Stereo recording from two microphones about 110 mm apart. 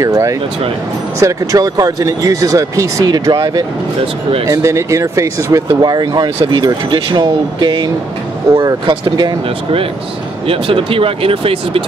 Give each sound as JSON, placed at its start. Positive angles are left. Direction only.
{"t": 0.0, "sound": "speech", "side_deg": -30}
{"t": 10.4, "sound": "speech", "side_deg": -55}